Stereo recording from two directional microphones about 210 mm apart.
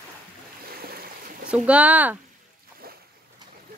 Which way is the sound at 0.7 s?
45° right (ahead or behind).